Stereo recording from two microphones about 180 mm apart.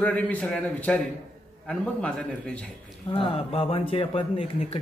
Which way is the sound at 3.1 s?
30° left (ahead or behind).